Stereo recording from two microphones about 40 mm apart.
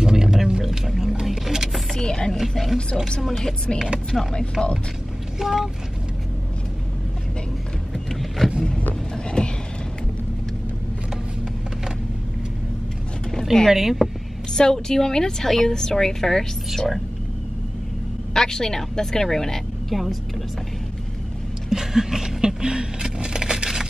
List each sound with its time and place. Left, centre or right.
0.0 s music: centre
1.2 s vehicle: centre
2.0 s chopping: centre
2.3 s speech: centre
4.3 s speech: left
5.4 s speech: centre
7.9 s power windows: centre
9.1 s vehicle: left
13.3 s speech: centre
14.5 s a woman's voice: centre
18.3 s a woman's voice: centre
19.9 s speech: centre
21.6 s a sound: centre